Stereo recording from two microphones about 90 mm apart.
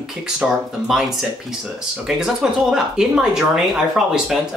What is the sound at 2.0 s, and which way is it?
Speech, 5° right (ahead or behind).